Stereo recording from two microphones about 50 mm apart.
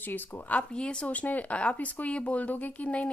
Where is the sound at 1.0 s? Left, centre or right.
Left.